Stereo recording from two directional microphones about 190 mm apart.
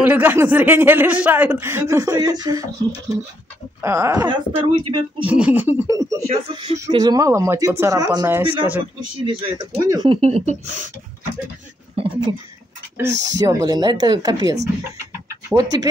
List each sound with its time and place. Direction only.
0.0 s speech: 10° right (ahead or behind)
3.8 s speech: 15° right (ahead or behind)
5.2 s speech: 10° right (ahead or behind)
6.2 s speech: 30° right (ahead or behind)
10.0 s speech: 35° right (ahead or behind)
11.9 s speech: 30° right (ahead or behind)
13.1 s speech: 70° right (ahead or behind)
13.4 s speech: 20° right (ahead or behind)